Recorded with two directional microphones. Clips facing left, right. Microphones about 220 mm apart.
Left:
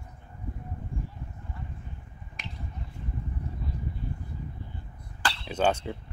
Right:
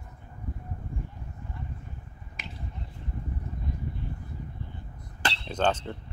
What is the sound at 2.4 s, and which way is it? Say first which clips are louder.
Finger snapping: even; centre (ahead or behind).